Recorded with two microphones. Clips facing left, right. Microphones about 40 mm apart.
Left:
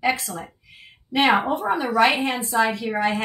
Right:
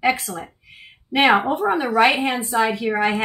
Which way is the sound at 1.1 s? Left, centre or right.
Right.